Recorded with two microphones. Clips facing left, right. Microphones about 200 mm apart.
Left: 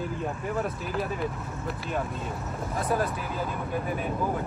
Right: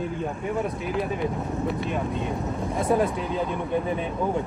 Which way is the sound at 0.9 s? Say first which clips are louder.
Right 4 dB; centre (ahead or behind).